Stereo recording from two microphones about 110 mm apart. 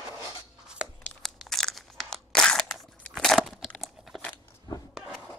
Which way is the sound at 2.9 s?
5° left (ahead or behind).